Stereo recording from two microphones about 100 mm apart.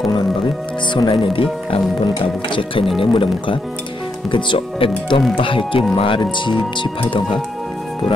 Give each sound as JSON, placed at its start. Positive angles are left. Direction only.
{"t": 0.9, "sound": "speech", "side_deg": 55}